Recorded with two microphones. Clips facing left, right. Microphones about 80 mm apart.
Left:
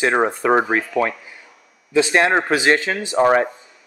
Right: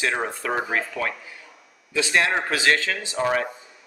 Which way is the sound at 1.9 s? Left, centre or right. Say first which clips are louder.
Left 6 dB; left.